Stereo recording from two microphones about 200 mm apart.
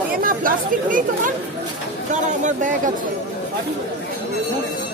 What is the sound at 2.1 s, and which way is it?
Speech, 40° right (ahead or behind).